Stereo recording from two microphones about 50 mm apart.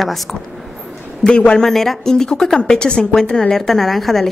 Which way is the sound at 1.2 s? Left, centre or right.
Left.